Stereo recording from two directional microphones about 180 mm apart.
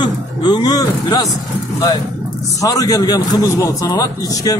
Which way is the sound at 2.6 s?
20° left (ahead or behind).